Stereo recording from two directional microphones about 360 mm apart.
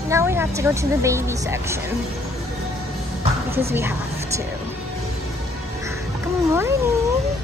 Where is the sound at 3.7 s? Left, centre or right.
Centre.